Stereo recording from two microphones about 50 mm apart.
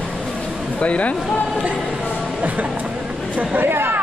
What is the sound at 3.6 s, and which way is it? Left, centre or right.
Speech, right.